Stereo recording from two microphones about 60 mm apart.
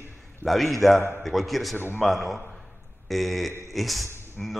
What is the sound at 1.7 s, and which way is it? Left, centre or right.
Speech, left.